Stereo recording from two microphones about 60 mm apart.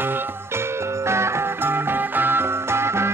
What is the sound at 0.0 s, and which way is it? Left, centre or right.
Music, right.